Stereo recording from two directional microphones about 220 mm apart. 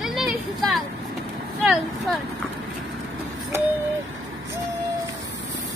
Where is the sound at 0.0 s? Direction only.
Centre (ahead or behind).